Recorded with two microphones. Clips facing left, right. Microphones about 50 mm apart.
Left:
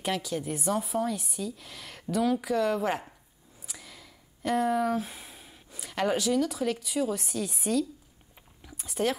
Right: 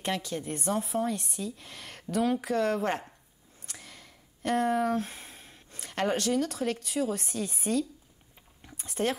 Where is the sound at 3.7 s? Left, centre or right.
Centre.